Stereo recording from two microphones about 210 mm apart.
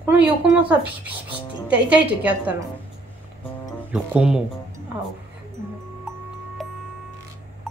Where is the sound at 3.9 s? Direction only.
5° right (ahead or behind).